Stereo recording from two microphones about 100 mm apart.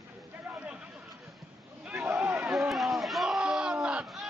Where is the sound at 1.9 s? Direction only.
15° right (ahead or behind).